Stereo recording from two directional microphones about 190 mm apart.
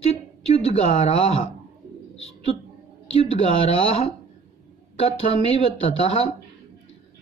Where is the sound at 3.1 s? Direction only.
30° left (ahead or behind).